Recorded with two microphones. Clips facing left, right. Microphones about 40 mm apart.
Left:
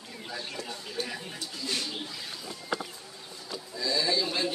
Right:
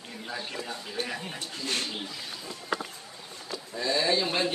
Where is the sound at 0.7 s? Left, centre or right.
Right.